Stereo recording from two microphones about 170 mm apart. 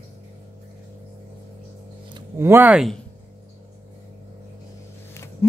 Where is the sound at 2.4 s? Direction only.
10° right (ahead or behind).